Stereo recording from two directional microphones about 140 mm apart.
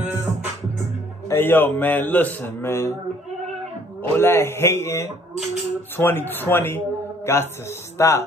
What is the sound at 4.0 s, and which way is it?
A man's voice, 15° left (ahead or behind).